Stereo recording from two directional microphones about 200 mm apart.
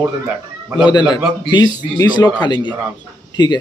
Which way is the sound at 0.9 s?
20° left (ahead or behind).